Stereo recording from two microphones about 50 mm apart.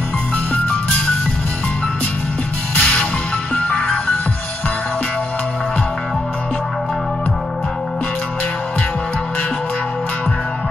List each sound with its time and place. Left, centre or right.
2.8 s music: left